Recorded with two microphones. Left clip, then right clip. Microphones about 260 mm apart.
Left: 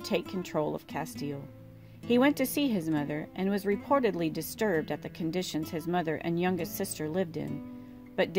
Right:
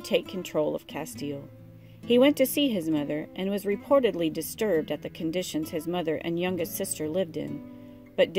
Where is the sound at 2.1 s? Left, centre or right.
Left.